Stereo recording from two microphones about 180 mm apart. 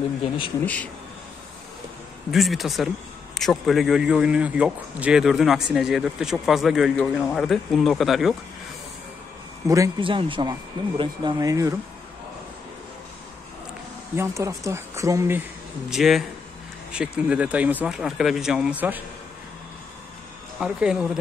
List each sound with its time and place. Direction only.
2.3 s a man's voice: centre (ahead or behind)
9.7 s speech: 25° right (ahead or behind)
14.1 s speech: 15° right (ahead or behind)
15.9 s a man's voice: centre (ahead or behind)
20.6 s a man's voice: 5° right (ahead or behind)